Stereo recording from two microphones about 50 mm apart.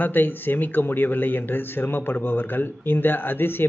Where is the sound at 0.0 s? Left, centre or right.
Left.